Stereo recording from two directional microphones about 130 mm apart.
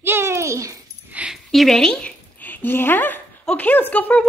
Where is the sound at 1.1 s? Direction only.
10° right (ahead or behind).